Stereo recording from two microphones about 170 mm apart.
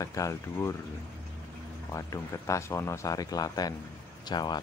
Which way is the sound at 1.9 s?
20° left (ahead or behind).